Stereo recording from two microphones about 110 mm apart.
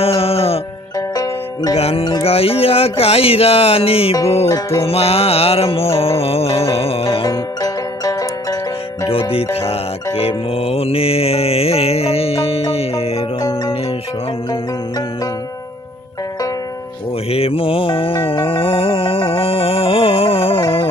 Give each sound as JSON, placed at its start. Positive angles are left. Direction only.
{"t": 0.2, "sound": "music", "side_deg": 65}
{"t": 0.9, "sound": "music", "side_deg": 35}
{"t": 1.8, "sound": "speech", "side_deg": 65}
{"t": 4.5, "sound": "music", "side_deg": 25}
{"t": 4.8, "sound": "speech", "side_deg": 65}
{"t": 7.2, "sound": "music", "side_deg": 35}
{"t": 9.3, "sound": "music", "side_deg": 65}
{"t": 13.4, "sound": "music", "side_deg": 25}
{"t": 17.3, "sound": "speech", "side_deg": 60}
{"t": 18.5, "sound": "music", "side_deg": 55}